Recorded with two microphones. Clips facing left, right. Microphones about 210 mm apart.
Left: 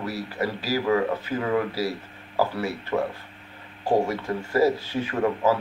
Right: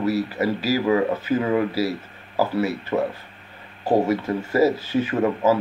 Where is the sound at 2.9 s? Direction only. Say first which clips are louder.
Right 3 dB; 15° right (ahead or behind).